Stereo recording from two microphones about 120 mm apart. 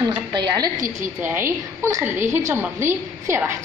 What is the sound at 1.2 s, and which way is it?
A woman's voice, 20° right (ahead or behind).